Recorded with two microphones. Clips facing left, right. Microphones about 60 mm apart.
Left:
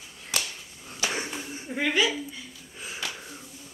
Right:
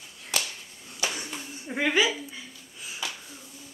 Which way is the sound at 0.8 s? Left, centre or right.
Left.